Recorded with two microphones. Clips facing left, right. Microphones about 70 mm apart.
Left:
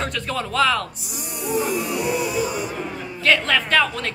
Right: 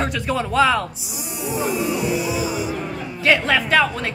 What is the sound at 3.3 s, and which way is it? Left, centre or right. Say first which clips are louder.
Speech: right 2 dB; centre.